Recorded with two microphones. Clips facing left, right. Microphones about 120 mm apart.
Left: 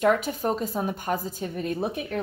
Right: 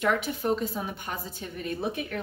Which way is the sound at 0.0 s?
40° left (ahead or behind).